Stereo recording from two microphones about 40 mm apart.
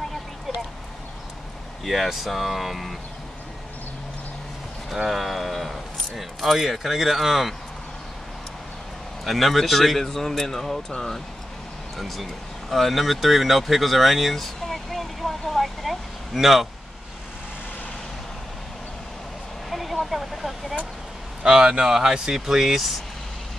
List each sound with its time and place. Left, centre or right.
1.9 s speech: centre
4.9 s speech: centre
9.2 s speech: centre
12.0 s a sound: centre
19.7 s vehicle: centre
20.1 s speech: centre
21.4 s speech: centre